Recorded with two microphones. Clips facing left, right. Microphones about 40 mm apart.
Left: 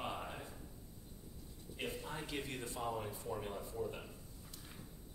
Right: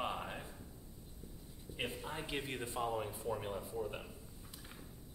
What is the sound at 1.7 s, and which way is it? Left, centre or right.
Speech, right.